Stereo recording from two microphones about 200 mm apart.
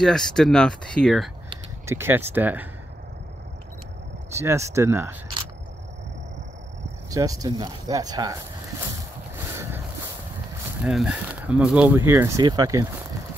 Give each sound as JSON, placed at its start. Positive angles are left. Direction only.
{"t": 0.0, "sound": "speech", "side_deg": 5}
{"t": 1.9, "sound": "speech", "side_deg": -10}
{"t": 4.4, "sound": "speech", "side_deg": -15}
{"t": 7.1, "sound": "speech", "side_deg": -15}
{"t": 9.4, "sound": "a sound", "side_deg": -15}
{"t": 10.8, "sound": "speech", "side_deg": -5}